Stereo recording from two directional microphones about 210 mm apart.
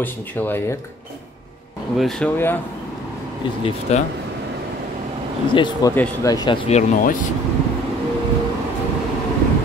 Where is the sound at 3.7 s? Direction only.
30° left (ahead or behind).